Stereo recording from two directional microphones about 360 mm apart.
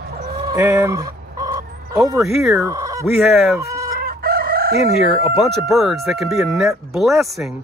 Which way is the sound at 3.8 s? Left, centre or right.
Right.